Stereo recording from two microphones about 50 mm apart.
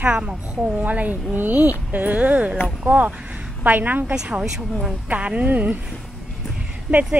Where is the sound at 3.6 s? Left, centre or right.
Right.